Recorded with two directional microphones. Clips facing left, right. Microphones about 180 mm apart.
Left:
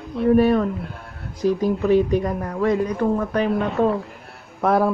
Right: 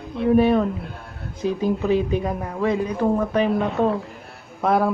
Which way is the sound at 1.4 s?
25° right (ahead or behind).